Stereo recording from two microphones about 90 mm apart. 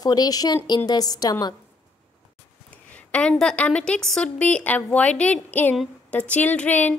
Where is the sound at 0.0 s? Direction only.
45° left (ahead or behind).